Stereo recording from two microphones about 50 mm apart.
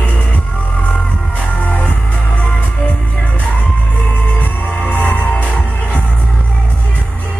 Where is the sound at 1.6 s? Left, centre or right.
Left.